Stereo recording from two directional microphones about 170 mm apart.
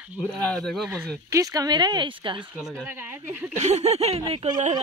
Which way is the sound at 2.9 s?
10° right (ahead or behind).